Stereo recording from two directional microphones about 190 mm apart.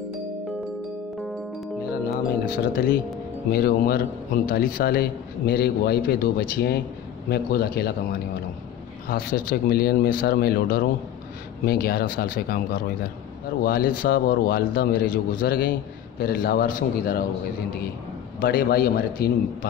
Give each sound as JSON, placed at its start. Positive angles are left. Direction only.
{"t": 2.4, "sound": "a man's voice", "side_deg": 50}
{"t": 9.0, "sound": "a man's voice", "side_deg": 50}
{"t": 18.4, "sound": "a man's voice", "side_deg": 50}